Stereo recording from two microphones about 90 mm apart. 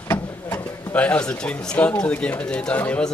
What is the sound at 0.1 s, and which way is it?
Speech, 20° left (ahead or behind).